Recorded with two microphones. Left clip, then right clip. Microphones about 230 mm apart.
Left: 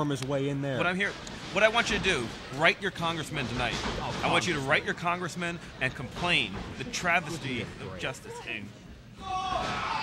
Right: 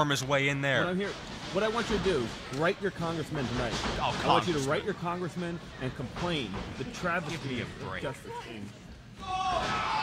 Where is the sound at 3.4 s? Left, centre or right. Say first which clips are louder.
Even; centre.